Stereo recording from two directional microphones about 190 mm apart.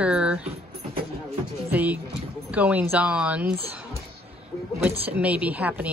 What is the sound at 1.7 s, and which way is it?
A woman's voice, 10° right (ahead or behind).